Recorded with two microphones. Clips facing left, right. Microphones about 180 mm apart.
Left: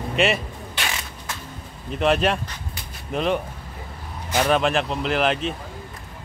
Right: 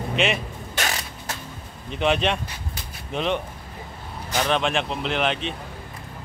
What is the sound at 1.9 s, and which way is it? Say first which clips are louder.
Speech: left 2 dB; centre (ahead or behind).